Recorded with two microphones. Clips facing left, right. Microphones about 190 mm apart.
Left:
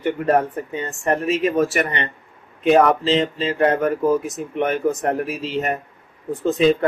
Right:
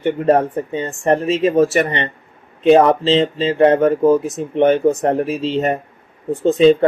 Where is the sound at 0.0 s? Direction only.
30° right (ahead or behind).